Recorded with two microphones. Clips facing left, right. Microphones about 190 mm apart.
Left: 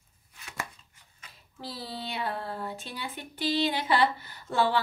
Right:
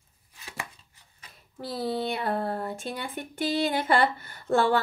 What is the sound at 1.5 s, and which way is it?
Speech, 55° right (ahead or behind).